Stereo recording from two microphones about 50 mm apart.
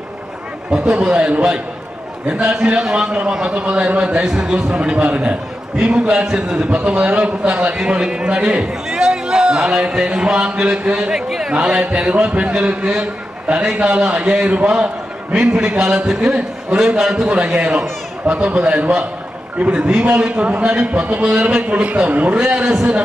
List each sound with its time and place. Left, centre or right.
0.7 s a man's voice: centre
11.2 s a sound: centre
11.5 s a man's voice: right